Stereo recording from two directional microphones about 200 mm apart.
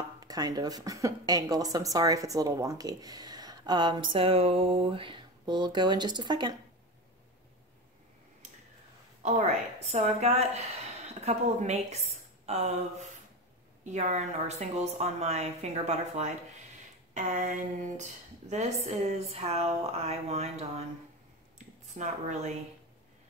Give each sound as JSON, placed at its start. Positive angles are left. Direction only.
{"t": 0.3, "sound": "speech", "side_deg": -20}
{"t": 9.2, "sound": "a woman's voice", "side_deg": -35}
{"t": 21.5, "sound": "a sound", "side_deg": -35}